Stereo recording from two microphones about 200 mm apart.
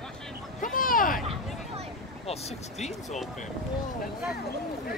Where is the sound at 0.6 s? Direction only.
45° left (ahead or behind).